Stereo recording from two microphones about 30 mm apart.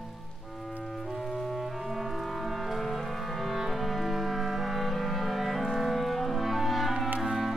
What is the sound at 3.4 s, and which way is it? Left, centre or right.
Music, centre.